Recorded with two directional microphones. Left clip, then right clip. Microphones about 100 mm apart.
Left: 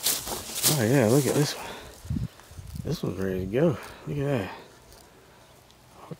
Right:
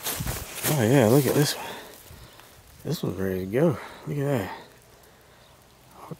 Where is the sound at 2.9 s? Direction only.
5° right (ahead or behind).